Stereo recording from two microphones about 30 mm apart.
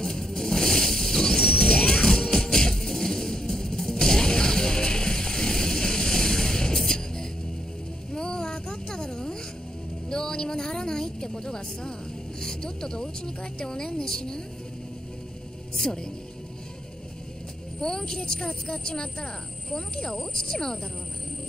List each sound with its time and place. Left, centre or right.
0.0 s music: centre
8.1 s a sound: left
12.4 s speech: left
15.7 s speech: centre
17.7 s speech: left